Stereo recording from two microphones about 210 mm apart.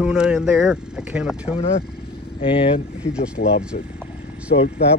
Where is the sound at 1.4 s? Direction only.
25° left (ahead or behind).